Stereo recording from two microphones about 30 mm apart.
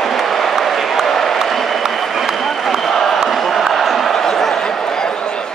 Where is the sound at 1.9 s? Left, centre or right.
Centre.